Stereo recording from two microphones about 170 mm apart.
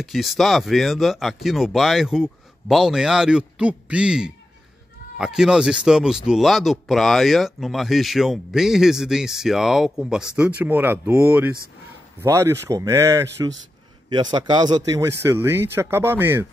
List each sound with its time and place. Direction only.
0.0 s speech: centre (ahead or behind)